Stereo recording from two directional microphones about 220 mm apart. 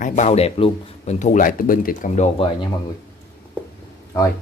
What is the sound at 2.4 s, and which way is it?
Speech, 25° left (ahead or behind).